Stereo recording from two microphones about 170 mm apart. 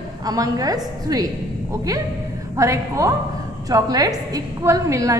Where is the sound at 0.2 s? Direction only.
20° right (ahead or behind).